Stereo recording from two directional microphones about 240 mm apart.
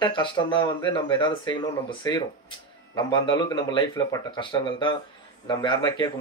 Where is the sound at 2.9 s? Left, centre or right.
Centre.